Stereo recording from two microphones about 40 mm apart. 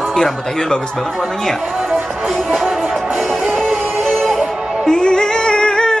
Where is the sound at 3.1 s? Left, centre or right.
Centre.